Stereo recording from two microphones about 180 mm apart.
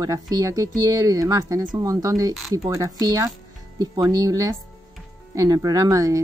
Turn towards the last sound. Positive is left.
turn(degrees=-20)  # may be behind; listen again after turning